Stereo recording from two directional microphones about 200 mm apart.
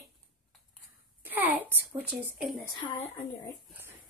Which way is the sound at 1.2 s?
10° right (ahead or behind).